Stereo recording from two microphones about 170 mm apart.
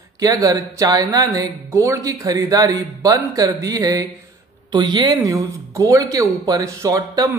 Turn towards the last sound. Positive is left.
turn(degrees=-20)  # may be behind; listen again after turning